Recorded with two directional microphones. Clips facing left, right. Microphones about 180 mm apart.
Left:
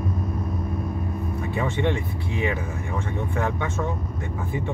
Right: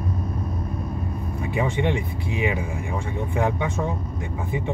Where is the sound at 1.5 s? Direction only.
15° right (ahead or behind).